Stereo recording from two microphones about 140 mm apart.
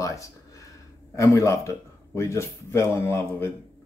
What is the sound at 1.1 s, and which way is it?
A man's voice, 20° left (ahead or behind).